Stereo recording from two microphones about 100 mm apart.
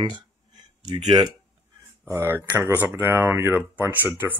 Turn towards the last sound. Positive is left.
turn(degrees=-20)  # may be behind; listen again after turning